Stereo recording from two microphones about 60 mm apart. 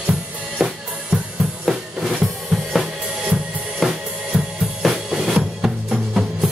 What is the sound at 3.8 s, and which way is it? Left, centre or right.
Music, centre.